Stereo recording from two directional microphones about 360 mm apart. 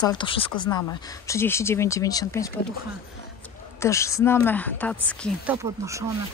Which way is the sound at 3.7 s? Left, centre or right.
Centre.